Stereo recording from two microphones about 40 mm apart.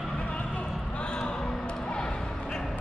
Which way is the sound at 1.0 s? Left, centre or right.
Left.